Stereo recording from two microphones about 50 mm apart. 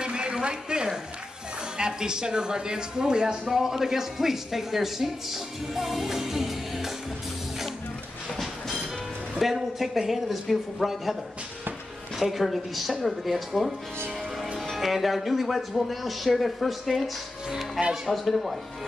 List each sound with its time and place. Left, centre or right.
0.0 s a sound: centre
1.8 s speech: centre
9.3 s speech: centre
12.2 s speech: centre